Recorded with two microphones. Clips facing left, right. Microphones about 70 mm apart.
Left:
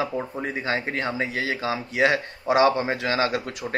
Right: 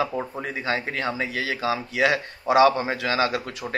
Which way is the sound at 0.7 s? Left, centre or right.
Left.